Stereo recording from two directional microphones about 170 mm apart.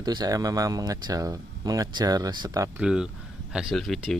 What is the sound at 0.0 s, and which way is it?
Speech, 25° right (ahead or behind).